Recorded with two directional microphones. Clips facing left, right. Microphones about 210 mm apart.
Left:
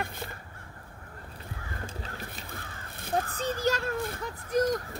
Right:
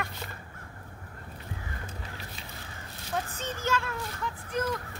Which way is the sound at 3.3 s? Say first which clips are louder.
Left 2 dB; 35° left (ahead or behind).